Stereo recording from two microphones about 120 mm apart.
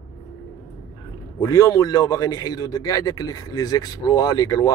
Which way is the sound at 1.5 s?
30° left (ahead or behind).